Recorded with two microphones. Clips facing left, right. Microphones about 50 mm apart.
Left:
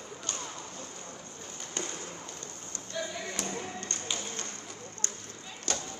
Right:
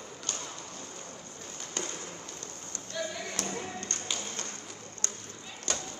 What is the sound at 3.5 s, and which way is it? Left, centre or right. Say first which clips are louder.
Tap: even; right.